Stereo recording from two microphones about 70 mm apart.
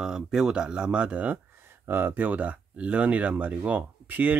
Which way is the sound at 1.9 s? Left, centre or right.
Right.